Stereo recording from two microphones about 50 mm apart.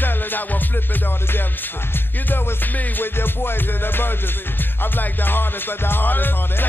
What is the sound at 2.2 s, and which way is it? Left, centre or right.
Music, left.